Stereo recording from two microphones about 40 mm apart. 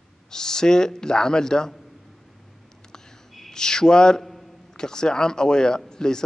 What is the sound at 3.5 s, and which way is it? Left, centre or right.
Speech, centre.